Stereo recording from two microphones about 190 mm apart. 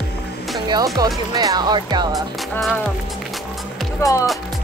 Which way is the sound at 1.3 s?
20° right (ahead or behind).